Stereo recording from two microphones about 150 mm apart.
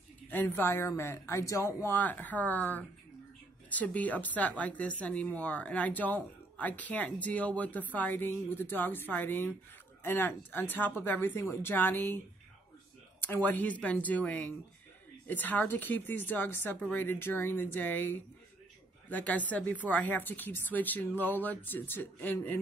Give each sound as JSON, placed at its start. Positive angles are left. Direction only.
{"t": 0.3, "sound": "speech", "side_deg": 15}
{"t": 13.2, "sound": "speech", "side_deg": 10}